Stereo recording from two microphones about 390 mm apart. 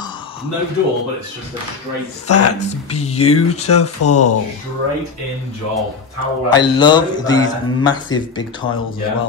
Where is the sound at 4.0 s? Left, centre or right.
Left.